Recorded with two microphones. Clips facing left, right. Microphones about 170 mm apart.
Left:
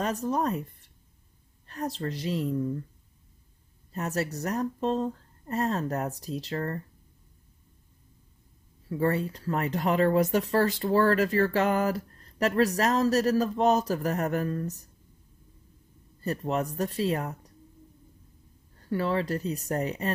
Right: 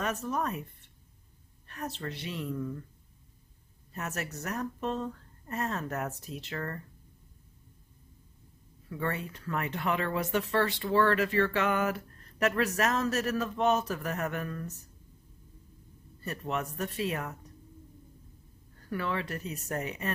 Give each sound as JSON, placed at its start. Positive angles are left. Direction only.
{"t": 0.0, "sound": "a woman's voice", "side_deg": 35}
{"t": 3.9, "sound": "speech", "side_deg": 35}
{"t": 8.8, "sound": "speech", "side_deg": 35}
{"t": 16.3, "sound": "speech", "side_deg": 35}
{"t": 18.8, "sound": "speech", "side_deg": 30}